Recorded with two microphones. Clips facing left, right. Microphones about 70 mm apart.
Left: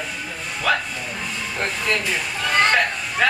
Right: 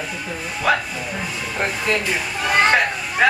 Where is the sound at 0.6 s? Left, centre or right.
Centre.